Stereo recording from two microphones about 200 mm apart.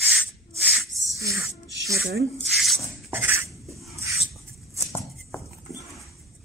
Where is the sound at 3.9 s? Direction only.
15° right (ahead or behind).